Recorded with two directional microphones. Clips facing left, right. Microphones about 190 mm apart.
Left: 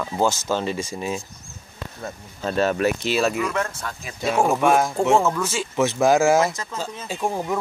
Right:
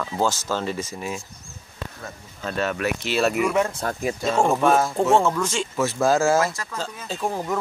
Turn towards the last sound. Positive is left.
turn(degrees=10)  # may be behind; listen again after turning